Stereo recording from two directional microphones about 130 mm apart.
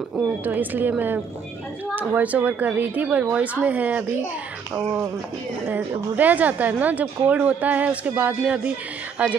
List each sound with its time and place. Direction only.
0.1 s a woman's voice: 15° right (ahead or behind)